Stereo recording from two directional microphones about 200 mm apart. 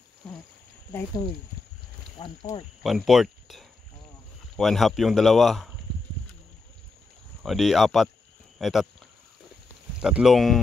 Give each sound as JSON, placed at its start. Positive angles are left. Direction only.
{"t": 0.2, "sound": "a sound", "side_deg": 5}
{"t": 2.1, "sound": "speech", "side_deg": 25}
{"t": 2.8, "sound": "speech", "side_deg": 0}
{"t": 7.4, "sound": "speech", "side_deg": 0}
{"t": 9.9, "sound": "speech", "side_deg": -5}